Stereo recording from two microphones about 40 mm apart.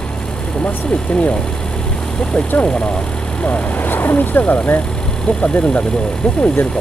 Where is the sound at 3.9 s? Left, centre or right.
Left.